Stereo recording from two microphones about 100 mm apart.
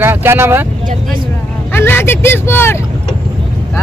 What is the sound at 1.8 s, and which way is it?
Speech, 25° left (ahead or behind).